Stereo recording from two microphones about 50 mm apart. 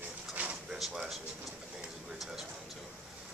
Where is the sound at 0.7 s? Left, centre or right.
Centre.